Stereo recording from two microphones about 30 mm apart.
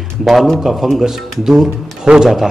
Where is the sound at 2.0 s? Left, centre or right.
Right.